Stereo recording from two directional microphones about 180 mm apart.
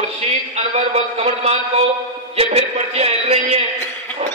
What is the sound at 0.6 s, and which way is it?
A man's voice, 35° right (ahead or behind).